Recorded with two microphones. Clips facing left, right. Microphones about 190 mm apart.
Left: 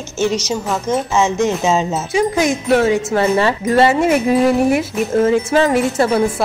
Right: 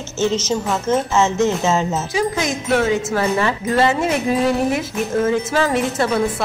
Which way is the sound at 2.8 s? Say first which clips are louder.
Left 3 dB; 25° left (ahead or behind).